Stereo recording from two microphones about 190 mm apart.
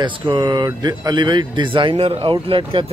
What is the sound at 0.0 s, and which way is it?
Speech, 25° right (ahead or behind).